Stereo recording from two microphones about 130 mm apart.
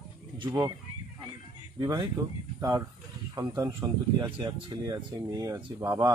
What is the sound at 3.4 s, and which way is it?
Speech, 30° right (ahead or behind).